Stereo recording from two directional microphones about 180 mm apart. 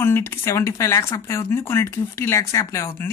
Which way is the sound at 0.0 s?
15° left (ahead or behind).